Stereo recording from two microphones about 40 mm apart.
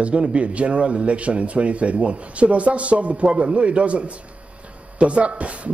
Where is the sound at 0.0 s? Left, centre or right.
Right.